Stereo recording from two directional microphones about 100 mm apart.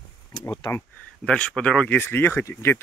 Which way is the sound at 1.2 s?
10° left (ahead or behind).